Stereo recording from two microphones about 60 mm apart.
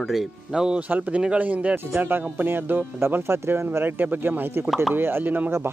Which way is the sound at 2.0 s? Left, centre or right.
Right.